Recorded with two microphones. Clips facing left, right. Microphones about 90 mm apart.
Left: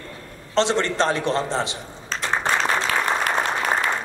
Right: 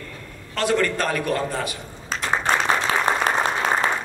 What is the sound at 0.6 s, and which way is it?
A man's voice, 25° left (ahead or behind).